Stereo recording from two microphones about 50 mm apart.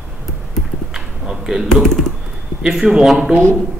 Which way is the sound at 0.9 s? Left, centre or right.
Centre.